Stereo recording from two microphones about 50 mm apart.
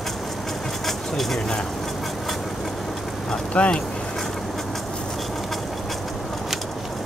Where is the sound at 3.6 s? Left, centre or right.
Left.